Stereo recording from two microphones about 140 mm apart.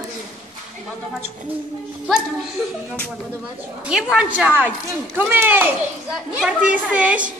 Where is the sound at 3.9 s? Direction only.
5° right (ahead or behind).